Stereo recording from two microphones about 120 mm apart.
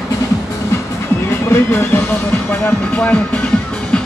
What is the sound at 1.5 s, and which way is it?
Speech, 20° left (ahead or behind).